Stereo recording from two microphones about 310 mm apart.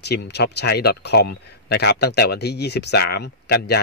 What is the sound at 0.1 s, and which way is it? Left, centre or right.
Speech, left.